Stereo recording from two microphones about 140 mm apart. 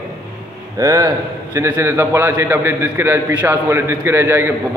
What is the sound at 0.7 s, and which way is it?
A man's voice, 25° right (ahead or behind).